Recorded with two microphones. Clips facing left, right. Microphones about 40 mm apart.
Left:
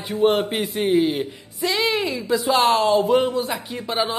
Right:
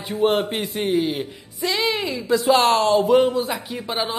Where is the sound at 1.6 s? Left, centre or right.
Left.